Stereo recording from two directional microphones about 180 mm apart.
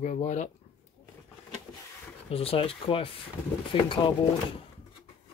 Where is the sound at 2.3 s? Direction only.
30° left (ahead or behind).